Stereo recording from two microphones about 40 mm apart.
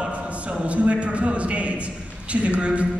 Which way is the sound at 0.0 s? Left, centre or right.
Right.